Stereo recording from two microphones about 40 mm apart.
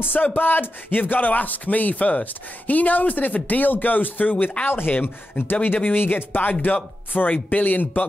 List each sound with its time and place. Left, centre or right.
0.0 s speech: left
4.6 s speech: left